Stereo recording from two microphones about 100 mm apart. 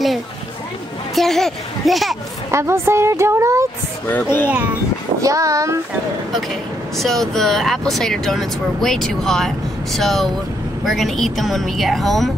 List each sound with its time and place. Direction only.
1.1 s speech: 5° left (ahead or behind)
2.5 s a woman's voice: 25° right (ahead or behind)
4.1 s a child's voice: 20° left (ahead or behind)
5.2 s speech: 30° right (ahead or behind)
7.0 s speech: 5° left (ahead or behind)